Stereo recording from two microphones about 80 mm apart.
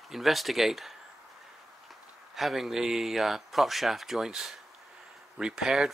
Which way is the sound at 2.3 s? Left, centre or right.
Centre.